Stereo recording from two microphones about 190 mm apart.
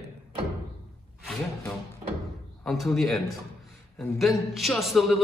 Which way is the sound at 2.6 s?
Centre (ahead or behind).